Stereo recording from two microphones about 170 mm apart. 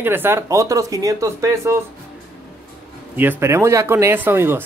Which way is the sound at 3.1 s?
15° right (ahead or behind).